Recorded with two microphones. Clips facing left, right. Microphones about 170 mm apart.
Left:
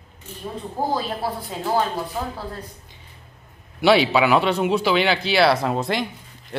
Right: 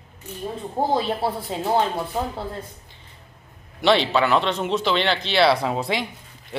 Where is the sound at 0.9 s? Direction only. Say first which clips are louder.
Right 3 dB; 25° right (ahead or behind).